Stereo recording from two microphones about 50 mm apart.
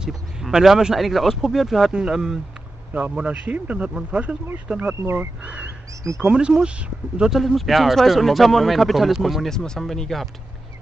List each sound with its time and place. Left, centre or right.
0.0 s speech: centre
1.9 s speech: centre
2.9 s speech: right
4.7 s speech: centre
5.0 s speech: right
5.4 s speech: right
7.3 s speech: centre